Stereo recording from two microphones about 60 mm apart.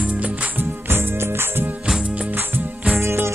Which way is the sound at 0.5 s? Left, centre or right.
Right.